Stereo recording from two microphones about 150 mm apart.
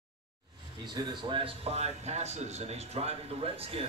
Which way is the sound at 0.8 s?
30° right (ahead or behind).